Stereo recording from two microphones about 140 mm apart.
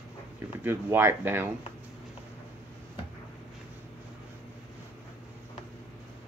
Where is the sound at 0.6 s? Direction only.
15° right (ahead or behind).